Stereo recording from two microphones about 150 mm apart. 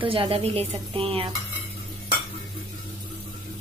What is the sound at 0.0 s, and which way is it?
Speech, 35° right (ahead or behind).